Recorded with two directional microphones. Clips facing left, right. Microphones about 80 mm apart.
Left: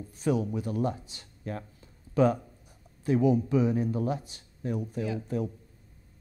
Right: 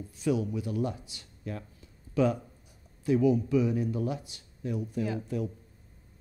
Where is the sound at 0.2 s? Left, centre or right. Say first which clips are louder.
Left 1 dB; left.